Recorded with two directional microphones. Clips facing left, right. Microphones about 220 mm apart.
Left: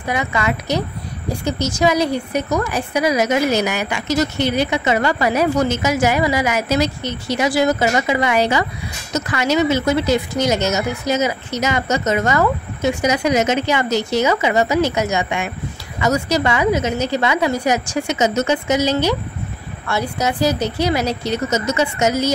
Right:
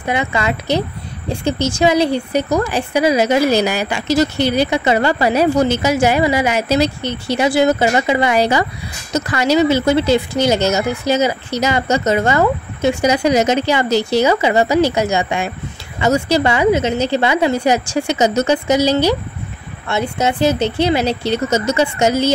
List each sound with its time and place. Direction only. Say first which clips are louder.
0.0 s speech: right 2 dB; 25° right (ahead or behind)